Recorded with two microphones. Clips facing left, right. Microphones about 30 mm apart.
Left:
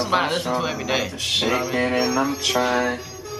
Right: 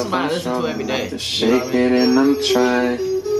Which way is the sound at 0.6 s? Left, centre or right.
Centre.